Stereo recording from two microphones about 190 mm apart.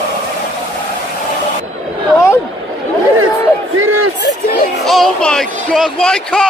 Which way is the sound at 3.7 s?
90° right.